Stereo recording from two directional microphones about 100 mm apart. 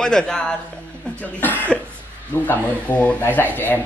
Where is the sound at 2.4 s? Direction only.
15° left (ahead or behind).